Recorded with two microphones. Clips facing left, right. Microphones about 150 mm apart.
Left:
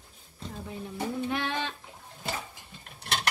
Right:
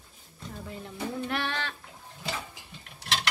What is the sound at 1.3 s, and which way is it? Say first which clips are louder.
Speech: left 1 dB; 15° left (ahead or behind).